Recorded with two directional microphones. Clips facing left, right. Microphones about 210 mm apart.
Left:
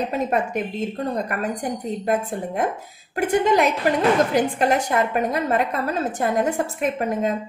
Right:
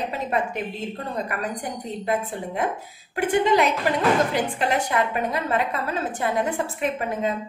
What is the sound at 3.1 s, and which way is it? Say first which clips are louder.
A woman's voice: left 1 dB; 45° left (ahead or behind).